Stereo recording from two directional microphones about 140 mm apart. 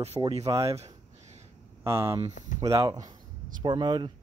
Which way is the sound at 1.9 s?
20° right (ahead or behind).